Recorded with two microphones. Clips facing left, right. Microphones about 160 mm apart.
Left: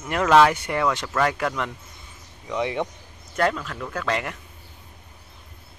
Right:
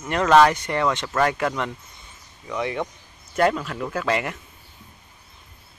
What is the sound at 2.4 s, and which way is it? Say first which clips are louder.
Speech: left 1 dB; 20° left (ahead or behind).